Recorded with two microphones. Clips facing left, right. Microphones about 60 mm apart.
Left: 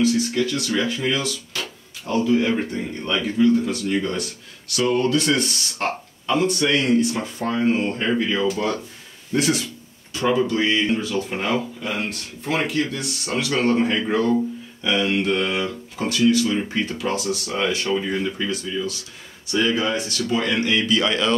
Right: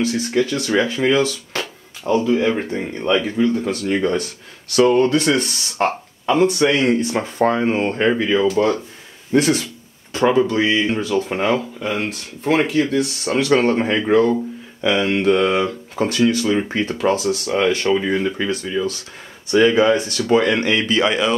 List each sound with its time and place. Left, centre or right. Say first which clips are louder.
0.0 s speech: right 1 dB; right
2.2 s speech: right 2 dB; right
2.7 s speech: right 6 dB; right
3.6 s speech: right 4 dB; right
10.6 s speech: right 3 dB; centre
11.1 s speech: right 5 dB; right
19.7 s speech: right 8 dB; right
20.0 s speech: right 7 dB; right
21.0 s speech: right 3 dB; centre